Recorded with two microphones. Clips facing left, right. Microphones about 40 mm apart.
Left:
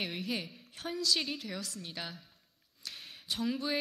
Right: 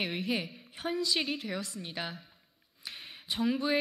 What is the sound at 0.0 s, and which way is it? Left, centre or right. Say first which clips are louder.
A woman's voice: right 4 dB; centre.